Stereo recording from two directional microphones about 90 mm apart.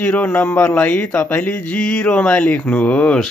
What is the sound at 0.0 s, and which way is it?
Speech, 20° left (ahead or behind).